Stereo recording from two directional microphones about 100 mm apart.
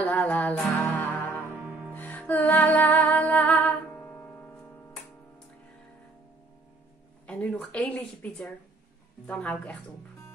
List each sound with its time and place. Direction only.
0.0 s music: 15° left (ahead or behind)
1.5 s music: 15° right (ahead or behind)
2.0 s music: 15° left (ahead or behind)
7.2 s speech: 10° left (ahead or behind)